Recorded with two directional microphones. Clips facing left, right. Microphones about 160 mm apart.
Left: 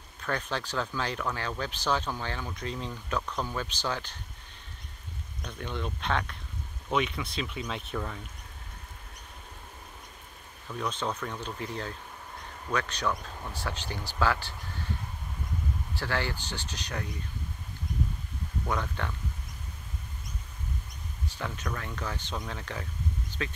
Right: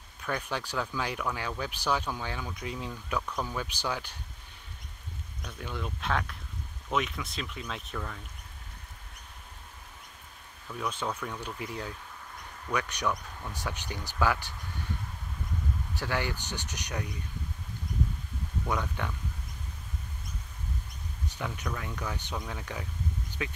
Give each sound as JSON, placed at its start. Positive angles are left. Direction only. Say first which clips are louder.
{"t": 0.2, "sound": "speech", "louder": "left 1 dB", "side_deg": -10}
{"t": 5.4, "sound": "speech", "louder": "left 2 dB", "side_deg": -5}
{"t": 10.7, "sound": "speech", "louder": "left 1 dB", "side_deg": -5}
{"t": 16.0, "sound": "speech", "louder": "even", "side_deg": -15}
{"t": 18.7, "sound": "speech", "louder": "even", "side_deg": -10}
{"t": 21.3, "sound": "speech", "louder": "even", "side_deg": -15}